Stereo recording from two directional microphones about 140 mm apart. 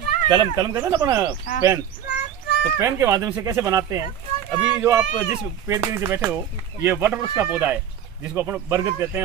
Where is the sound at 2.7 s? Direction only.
20° right (ahead or behind).